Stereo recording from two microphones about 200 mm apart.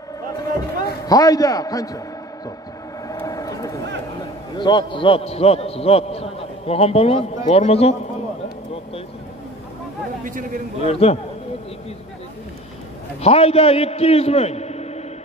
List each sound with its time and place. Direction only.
1.0 s a man's voice: 20° left (ahead or behind)
3.1 s a sound: 15° left (ahead or behind)
4.2 s a man's voice: 20° left (ahead or behind)
10.2 s a man's voice: 40° right (ahead or behind)
10.8 s a man's voice: 30° left (ahead or behind)
13.2 s a man's voice: 30° left (ahead or behind)